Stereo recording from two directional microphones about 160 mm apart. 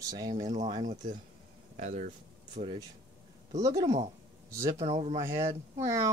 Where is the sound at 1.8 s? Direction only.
50° right (ahead or behind).